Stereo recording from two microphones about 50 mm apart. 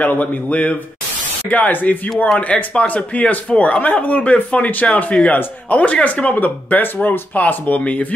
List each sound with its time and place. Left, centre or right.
0.0 s speech: left